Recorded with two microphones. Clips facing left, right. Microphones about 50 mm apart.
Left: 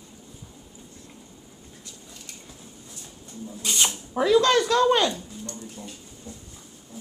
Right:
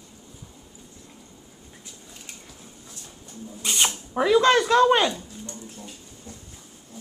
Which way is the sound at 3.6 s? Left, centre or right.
Centre.